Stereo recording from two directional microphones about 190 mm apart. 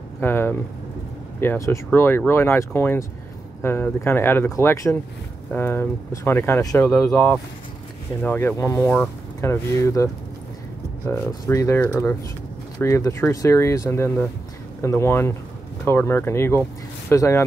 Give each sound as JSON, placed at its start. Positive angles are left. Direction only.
{"t": 0.2, "sound": "speech", "side_deg": 10}
{"t": 8.2, "sound": "speech", "side_deg": 10}
{"t": 11.1, "sound": "speech", "side_deg": 15}